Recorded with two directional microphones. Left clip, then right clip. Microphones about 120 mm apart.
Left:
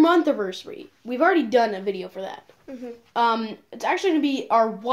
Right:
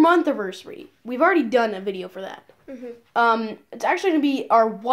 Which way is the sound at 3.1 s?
35° right (ahead or behind).